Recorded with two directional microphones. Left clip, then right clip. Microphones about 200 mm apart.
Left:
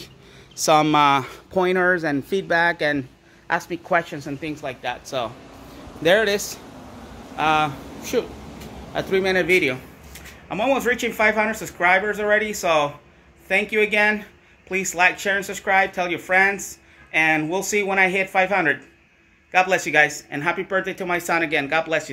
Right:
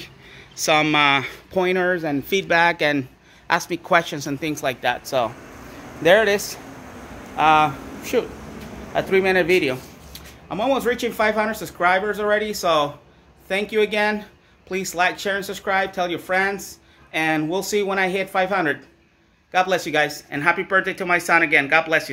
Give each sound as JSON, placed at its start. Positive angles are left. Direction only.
{"t": 0.6, "sound": "a man's voice", "side_deg": 20}
{"t": 4.6, "sound": "speech", "side_deg": -45}
{"t": 5.0, "sound": "speech", "side_deg": -25}
{"t": 6.0, "sound": "a man's voice", "side_deg": -5}
{"t": 10.5, "sound": "speech", "side_deg": 0}